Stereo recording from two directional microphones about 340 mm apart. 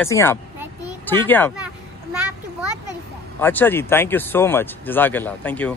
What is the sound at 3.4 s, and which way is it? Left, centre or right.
A man's voice, centre.